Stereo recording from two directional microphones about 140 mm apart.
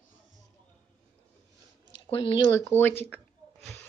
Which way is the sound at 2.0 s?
40° left (ahead or behind).